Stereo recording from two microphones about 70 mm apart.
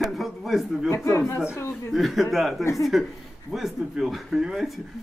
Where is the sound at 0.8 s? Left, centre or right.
Left.